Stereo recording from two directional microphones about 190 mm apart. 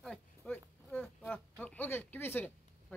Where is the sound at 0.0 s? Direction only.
5° left (ahead or behind).